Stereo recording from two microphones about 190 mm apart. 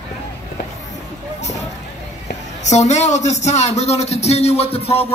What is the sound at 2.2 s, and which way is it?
A man's voice, 40° left (ahead or behind).